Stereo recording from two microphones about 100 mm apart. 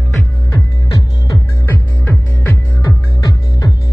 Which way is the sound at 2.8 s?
35° left (ahead or behind).